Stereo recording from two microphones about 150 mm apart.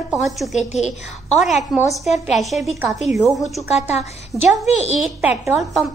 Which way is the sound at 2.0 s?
Centre (ahead or behind).